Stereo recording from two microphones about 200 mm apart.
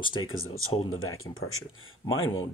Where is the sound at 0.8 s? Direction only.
90° left.